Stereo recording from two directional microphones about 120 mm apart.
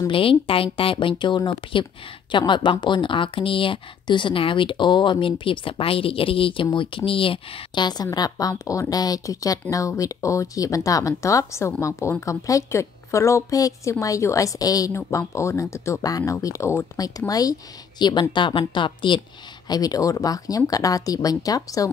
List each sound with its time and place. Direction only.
0.1 s speech: 50° left (ahead or behind)
19.7 s speech: 30° left (ahead or behind)